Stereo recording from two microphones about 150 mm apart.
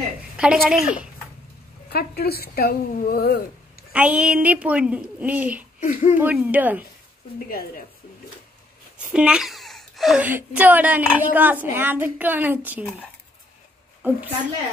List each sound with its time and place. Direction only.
0.4 s a woman's voice: 5° right (ahead or behind)
1.9 s speech: 90° left
3.9 s a woman's voice: 10° right (ahead or behind)
5.8 s speech: 55° left (ahead or behind)
6.1 s a woman's voice: 10° right (ahead or behind)
7.3 s a woman's voice: 75° left (ahead or behind)
8.9 s a sound: 5° right (ahead or behind)
10.2 s a woman's voice: 10° right (ahead or behind)
14.0 s a woman's voice: 10° right (ahead or behind)